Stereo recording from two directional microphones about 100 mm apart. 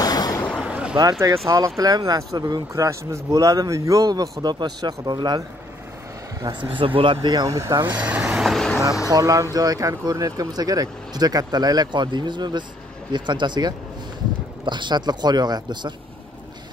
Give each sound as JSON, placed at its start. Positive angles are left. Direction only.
{"t": 0.0, "sound": "a sound", "side_deg": 40}
{"t": 0.6, "sound": "vehicle", "side_deg": -10}
{"t": 1.5, "sound": "speech", "side_deg": -35}
{"t": 6.7, "sound": "speech", "side_deg": -60}
{"t": 7.2, "sound": "speech", "side_deg": -45}
{"t": 7.5, "sound": "speech", "side_deg": -30}
{"t": 7.8, "sound": "vehicle", "side_deg": -15}
{"t": 9.1, "sound": "speech", "side_deg": -35}